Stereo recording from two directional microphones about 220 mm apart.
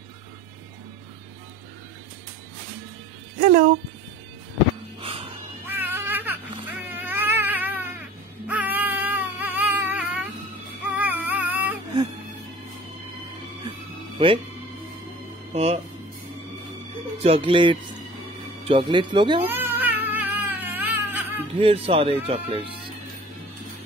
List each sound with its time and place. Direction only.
3.3 s speech: 30° right (ahead or behind)
5.0 s dog: 25° right (ahead or behind)
5.7 s baby cry: 10° right (ahead or behind)
6.9 s cat: 10° right (ahead or behind)
8.5 s a sound: 10° right (ahead or behind)
11.0 s music: 10° right (ahead or behind)
13.7 s music: 25° right (ahead or behind)
15.5 s speech: 30° right (ahead or behind)
17.2 s speech: 25° right (ahead or behind)
19.4 s cat: 10° right (ahead or behind)
21.5 s speech: 25° right (ahead or behind)